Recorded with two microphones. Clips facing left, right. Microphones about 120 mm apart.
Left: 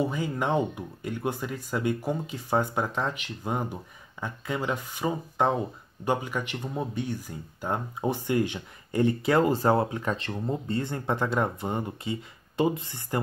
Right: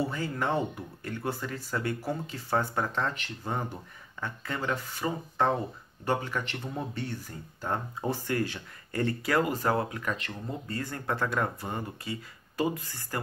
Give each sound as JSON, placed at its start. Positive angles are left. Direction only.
{"t": 0.0, "sound": "speech", "side_deg": 15}